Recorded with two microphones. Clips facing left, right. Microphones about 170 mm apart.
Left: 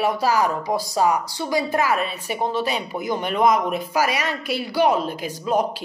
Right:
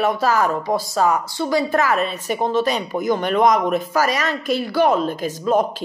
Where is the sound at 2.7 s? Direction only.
45° right (ahead or behind).